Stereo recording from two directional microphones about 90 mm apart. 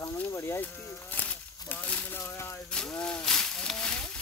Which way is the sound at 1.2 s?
20° left (ahead or behind).